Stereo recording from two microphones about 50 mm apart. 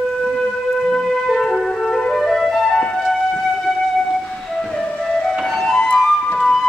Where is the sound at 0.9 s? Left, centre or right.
Centre.